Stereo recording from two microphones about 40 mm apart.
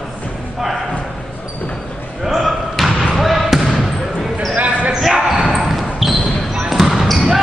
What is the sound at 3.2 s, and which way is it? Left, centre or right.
Basketball bounce, centre.